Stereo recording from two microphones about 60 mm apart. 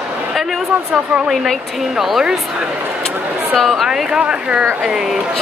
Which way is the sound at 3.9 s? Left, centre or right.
Centre.